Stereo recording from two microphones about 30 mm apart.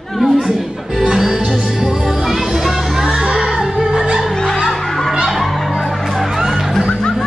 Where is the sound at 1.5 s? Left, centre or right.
Centre.